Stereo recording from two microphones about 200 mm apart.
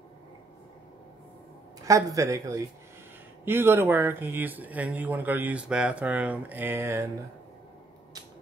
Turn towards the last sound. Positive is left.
turn(degrees=-10)  # may be behind; listen again after turning